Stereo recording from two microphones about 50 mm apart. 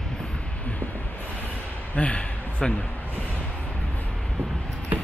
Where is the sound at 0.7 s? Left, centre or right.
Left.